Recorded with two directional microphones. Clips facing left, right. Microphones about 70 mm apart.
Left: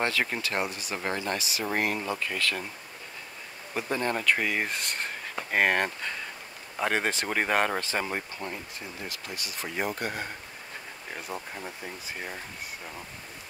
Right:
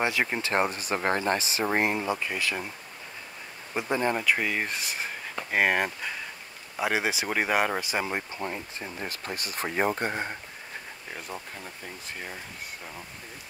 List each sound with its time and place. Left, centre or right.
0.0 s speech: centre
0.5 s speech: right; by 2.7 s centre
3.7 s speech: centre
9.0 s speech: right
11.1 s speech: centre